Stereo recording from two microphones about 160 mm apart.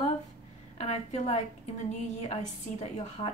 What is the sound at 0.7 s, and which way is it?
A woman's voice, 45° left (ahead or behind).